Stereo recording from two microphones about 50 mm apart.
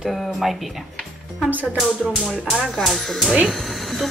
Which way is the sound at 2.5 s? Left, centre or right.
Centre.